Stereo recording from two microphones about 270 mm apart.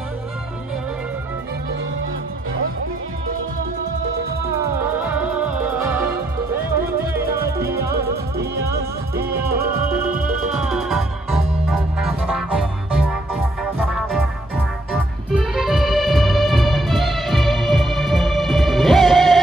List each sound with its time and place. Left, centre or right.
4.6 s music: centre
7.9 s music: right
10.5 s organ: centre
12.4 s music: centre
15.3 s music: centre